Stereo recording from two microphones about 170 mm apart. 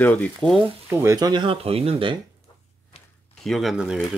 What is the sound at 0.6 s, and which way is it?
Speech, 15° right (ahead or behind).